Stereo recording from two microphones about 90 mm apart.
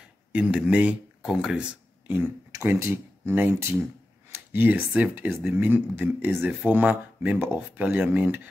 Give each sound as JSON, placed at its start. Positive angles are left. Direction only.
{"t": 0.3, "sound": "speech", "side_deg": -15}
{"t": 2.5, "sound": "speech", "side_deg": -30}